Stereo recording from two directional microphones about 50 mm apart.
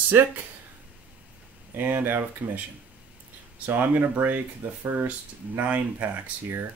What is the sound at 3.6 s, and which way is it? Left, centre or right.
Speech, right.